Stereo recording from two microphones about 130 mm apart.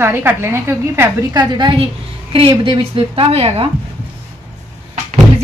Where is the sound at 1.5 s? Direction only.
35° right (ahead or behind); by 3.6 s 55° right (ahead or behind).